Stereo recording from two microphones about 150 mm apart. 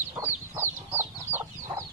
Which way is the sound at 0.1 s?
15° right (ahead or behind).